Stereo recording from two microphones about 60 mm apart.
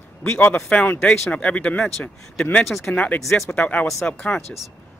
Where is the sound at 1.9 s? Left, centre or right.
Centre.